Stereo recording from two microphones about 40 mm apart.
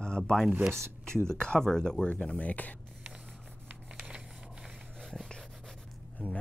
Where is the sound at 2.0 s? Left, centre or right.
Left.